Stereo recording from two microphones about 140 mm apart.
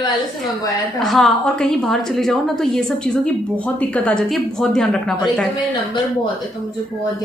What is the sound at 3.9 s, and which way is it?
A woman's voice, 5° left (ahead or behind).